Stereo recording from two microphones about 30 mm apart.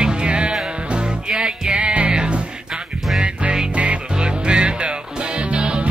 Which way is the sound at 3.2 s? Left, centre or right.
Right.